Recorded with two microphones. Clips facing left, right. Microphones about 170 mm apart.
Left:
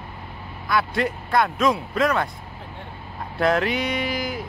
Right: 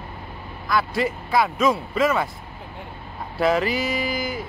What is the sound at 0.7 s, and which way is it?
Speech, centre (ahead or behind).